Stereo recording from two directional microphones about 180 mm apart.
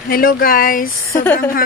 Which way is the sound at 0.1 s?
55° left (ahead or behind).